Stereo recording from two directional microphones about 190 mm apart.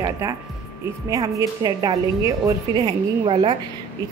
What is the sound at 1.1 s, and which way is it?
A woman's voice, 15° right (ahead or behind).